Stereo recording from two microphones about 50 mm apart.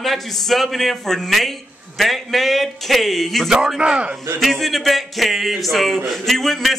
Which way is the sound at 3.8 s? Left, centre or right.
Right.